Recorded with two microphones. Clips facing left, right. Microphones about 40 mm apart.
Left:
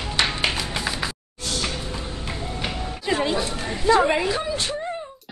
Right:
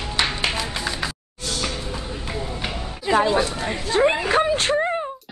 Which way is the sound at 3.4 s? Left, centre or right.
Right.